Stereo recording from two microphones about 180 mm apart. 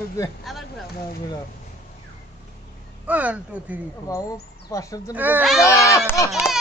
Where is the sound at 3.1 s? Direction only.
10° right (ahead or behind).